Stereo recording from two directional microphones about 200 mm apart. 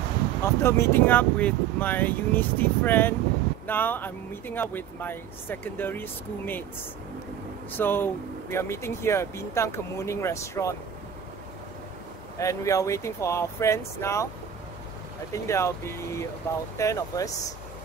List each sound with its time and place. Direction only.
0.4 s speech: 15° left (ahead or behind)
7.7 s speech: 10° left (ahead or behind)
12.4 s speech: 15° left (ahead or behind)
15.3 s speech: 15° left (ahead or behind)